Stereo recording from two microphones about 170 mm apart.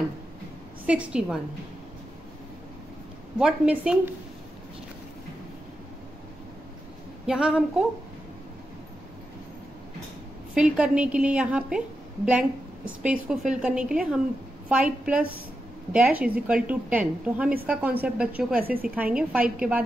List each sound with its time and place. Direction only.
0.8 s a woman's voice: 5° right (ahead or behind)
3.3 s a woman's voice: 5° right (ahead or behind)
7.2 s a woman's voice: 5° right (ahead or behind)
10.5 s a woman's voice: 5° right (ahead or behind)
18.7 s a woman's voice: 60° right (ahead or behind)
18.9 s a woman's voice: 10° right (ahead or behind)